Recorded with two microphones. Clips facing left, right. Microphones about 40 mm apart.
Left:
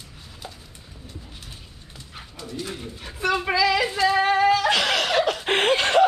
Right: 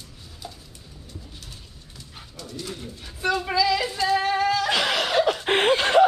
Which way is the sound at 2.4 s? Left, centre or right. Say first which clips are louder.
Left 2 dB; centre.